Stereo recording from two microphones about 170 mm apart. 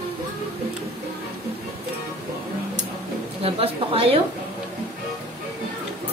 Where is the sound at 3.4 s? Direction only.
35° right (ahead or behind).